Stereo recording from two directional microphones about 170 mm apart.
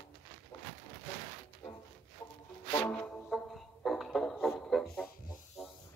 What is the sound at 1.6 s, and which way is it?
Music, 25° left (ahead or behind).